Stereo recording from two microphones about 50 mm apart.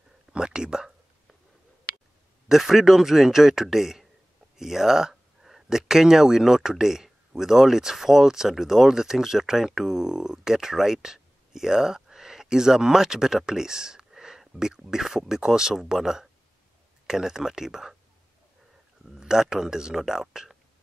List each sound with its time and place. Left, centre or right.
0.3 s whispering: centre
2.4 s speech: centre
19.0 s speech: centre